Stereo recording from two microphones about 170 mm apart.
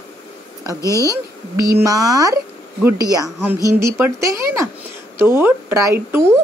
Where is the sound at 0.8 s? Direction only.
20° left (ahead or behind).